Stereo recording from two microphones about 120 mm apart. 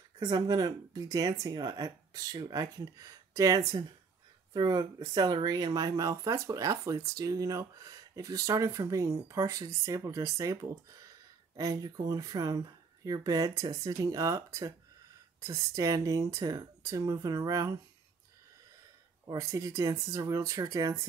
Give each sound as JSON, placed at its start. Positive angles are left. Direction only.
{"t": 0.2, "sound": "speech", "side_deg": -35}
{"t": 19.2, "sound": "speech", "side_deg": -30}